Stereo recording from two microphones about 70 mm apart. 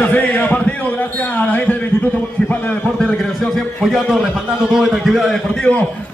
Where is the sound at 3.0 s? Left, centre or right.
Centre.